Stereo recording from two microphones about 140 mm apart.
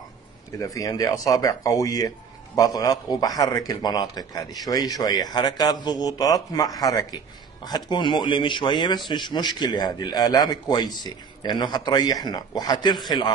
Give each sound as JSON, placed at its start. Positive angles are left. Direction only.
{"t": 0.6, "sound": "a man's voice", "side_deg": 25}